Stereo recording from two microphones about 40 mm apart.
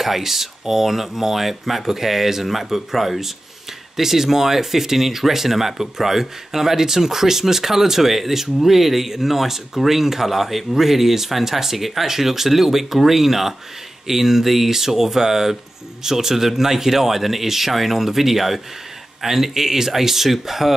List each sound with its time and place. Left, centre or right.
0.0 s speech: centre